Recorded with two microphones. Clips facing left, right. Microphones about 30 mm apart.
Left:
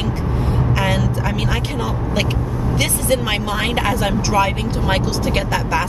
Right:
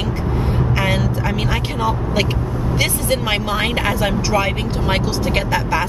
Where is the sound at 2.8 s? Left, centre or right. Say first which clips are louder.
Left 1 dB; centre.